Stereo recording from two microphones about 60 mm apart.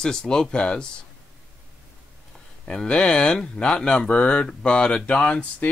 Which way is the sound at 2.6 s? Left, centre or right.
Centre.